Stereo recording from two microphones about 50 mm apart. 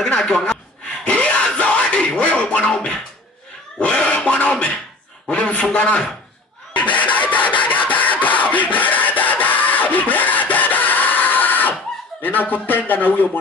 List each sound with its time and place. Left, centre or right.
0.0 s speech: centre
1.0 s music: left
2.0 s a sound: centre
3.8 s a man's voice: centre
6.7 s a sound: left
12.2 s a man's voice: left